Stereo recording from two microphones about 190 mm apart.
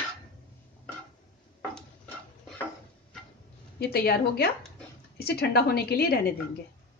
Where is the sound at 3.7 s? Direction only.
55° left (ahead or behind).